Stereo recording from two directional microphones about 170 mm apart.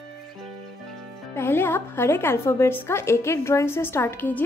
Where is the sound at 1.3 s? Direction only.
15° left (ahead or behind).